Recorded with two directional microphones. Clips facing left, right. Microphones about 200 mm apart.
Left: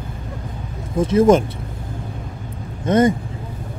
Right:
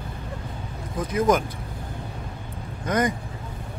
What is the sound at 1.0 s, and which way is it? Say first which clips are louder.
Speech: left 8 dB; 25° left (ahead or behind).